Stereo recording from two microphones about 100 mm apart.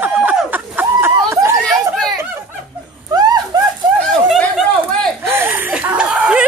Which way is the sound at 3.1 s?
40° right (ahead or behind).